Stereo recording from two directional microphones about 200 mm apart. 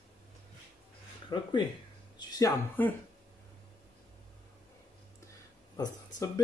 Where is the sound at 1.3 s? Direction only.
25° left (ahead or behind).